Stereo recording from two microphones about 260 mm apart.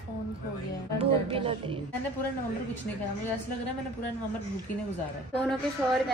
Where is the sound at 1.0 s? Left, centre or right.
Right.